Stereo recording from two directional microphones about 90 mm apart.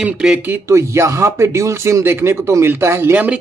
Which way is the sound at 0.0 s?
10° right (ahead or behind).